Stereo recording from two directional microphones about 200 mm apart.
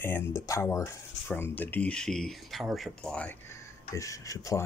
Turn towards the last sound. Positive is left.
turn(degrees=15)  # may be behind; listen again after turning